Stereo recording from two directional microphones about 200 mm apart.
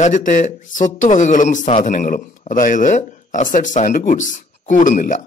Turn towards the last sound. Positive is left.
turn(degrees=40)  # may be behind; listen again after turning